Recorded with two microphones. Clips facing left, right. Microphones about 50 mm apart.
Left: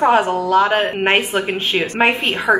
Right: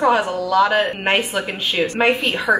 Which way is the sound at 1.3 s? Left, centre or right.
Left.